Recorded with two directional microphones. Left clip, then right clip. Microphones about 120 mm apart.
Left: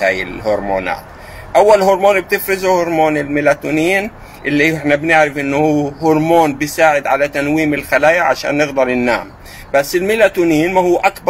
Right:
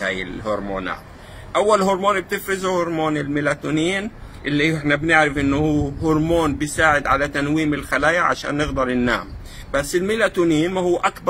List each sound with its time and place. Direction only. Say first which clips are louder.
0.0 s speech: left 9 dB; 20° right (ahead or behind)